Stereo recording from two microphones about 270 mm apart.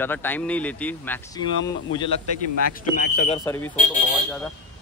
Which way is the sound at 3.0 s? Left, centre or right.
Left.